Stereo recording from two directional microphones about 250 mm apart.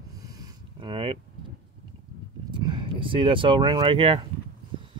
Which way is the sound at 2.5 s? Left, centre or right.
Centre.